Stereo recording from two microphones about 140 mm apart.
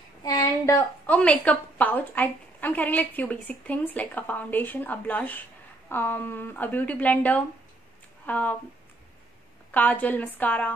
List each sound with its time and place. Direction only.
0.2 s a sound: 25° left (ahead or behind)
1.0 s a woman's voice: 10° left (ahead or behind)
9.7 s a woman's voice: 10° left (ahead or behind)